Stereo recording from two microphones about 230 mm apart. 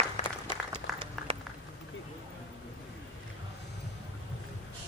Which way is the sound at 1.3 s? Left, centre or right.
Right.